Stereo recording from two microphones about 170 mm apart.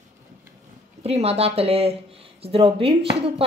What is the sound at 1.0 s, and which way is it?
Speech, 35° right (ahead or behind).